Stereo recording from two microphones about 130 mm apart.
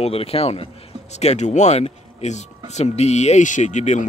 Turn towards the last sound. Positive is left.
turn(degrees=65)  # may be behind; listen again after turning